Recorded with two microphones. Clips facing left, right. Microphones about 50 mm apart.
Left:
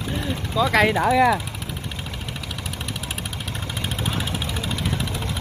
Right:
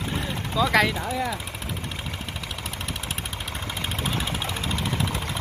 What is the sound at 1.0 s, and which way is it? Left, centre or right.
Speech, left.